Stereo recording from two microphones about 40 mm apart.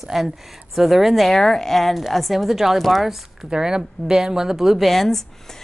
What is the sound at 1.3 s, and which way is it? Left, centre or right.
A woman's voice, centre.